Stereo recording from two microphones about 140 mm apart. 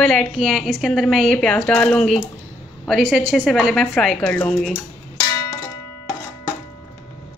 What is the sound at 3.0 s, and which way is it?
Speech, 5° right (ahead or behind).